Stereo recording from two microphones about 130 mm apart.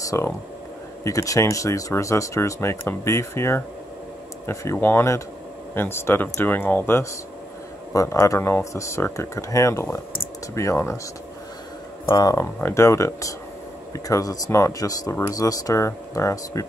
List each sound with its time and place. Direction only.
0.0 s speech: 25° left (ahead or behind)
12.1 s speech: 30° left (ahead or behind)
12.4 s speech: 20° left (ahead or behind)